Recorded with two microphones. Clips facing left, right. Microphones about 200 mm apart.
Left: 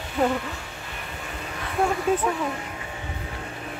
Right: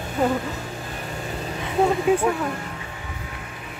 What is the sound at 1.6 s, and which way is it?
Speech, 15° right (ahead or behind).